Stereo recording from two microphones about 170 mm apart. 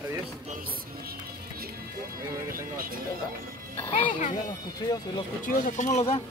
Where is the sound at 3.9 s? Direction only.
40° left (ahead or behind).